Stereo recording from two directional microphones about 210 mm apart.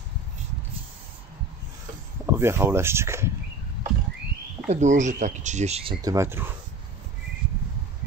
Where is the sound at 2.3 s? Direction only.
10° right (ahead or behind).